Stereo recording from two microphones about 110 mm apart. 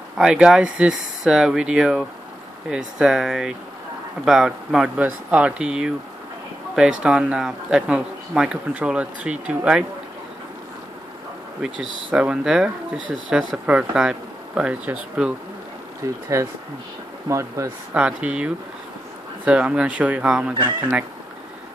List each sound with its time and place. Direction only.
0.2 s speech: 5° right (ahead or behind)
12.1 s speech: 10° right (ahead or behind)
16.3 s speech: 25° right (ahead or behind)
17.9 s speech: 10° right (ahead or behind)